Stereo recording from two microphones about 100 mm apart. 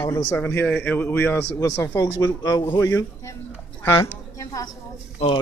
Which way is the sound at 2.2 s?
40° left (ahead or behind).